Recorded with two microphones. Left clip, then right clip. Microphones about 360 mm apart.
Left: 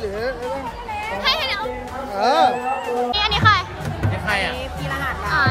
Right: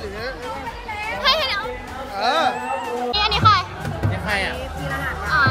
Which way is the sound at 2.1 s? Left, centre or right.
Left.